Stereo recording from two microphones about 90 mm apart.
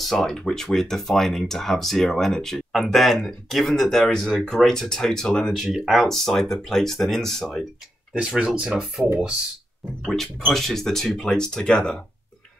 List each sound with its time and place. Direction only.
0.0 s speech: centre (ahead or behind)
5.6 s speech: 5° right (ahead or behind)
8.4 s speech: 10° right (ahead or behind); by 12.0 s 10° left (ahead or behind)